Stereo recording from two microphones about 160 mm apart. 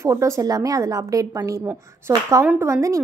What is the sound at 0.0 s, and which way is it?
A woman's voice, 20° right (ahead or behind).